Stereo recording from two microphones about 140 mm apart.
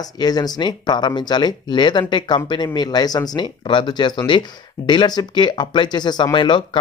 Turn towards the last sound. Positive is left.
turn(degrees=35)  # may be behind; listen again after turning